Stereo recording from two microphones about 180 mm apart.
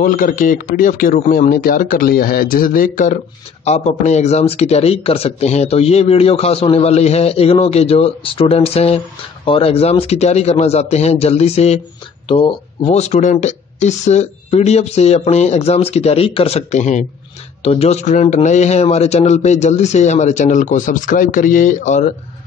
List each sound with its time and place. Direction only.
0.0 s speech: 50° left (ahead or behind)
3.6 s a man's voice: 40° left (ahead or behind)